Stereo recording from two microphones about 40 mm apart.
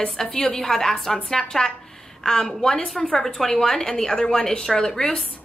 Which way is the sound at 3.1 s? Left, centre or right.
Centre.